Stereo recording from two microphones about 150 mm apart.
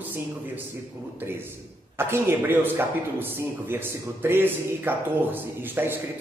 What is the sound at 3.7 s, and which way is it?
A man's voice, 15° right (ahead or behind).